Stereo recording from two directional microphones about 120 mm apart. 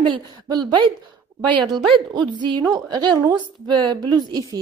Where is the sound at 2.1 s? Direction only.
40° right (ahead or behind).